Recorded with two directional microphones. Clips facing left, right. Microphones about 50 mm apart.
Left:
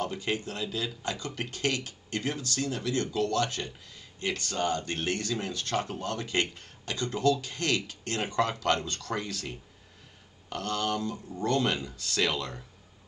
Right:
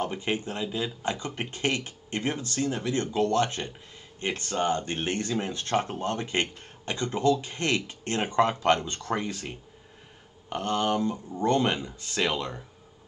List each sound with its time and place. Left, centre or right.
0.0 s speech: right